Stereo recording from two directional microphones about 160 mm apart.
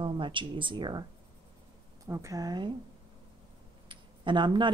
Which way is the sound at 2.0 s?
20° right (ahead or behind).